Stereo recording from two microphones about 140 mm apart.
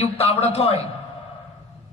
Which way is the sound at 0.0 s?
45° left (ahead or behind).